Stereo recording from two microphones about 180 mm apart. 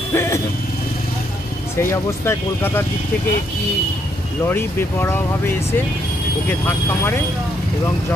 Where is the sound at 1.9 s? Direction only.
15° left (ahead or behind).